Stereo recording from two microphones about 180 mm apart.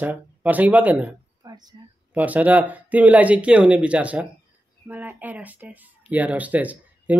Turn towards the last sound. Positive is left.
turn(degrees=-10)  # may be behind; listen again after turning